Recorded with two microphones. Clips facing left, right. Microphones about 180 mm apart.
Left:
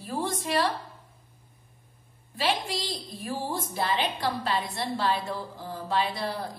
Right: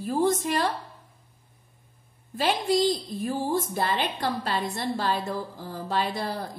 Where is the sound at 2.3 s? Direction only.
45° right (ahead or behind).